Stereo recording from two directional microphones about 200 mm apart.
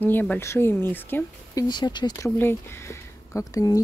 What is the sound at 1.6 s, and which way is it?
Speech, 20° left (ahead or behind).